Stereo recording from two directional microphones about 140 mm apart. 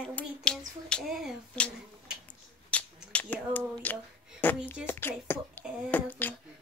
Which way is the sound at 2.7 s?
10° left (ahead or behind).